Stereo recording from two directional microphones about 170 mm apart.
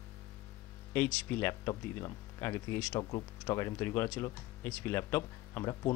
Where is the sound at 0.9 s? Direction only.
10° left (ahead or behind).